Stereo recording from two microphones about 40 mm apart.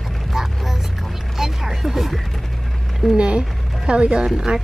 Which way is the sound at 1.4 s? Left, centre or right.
Centre.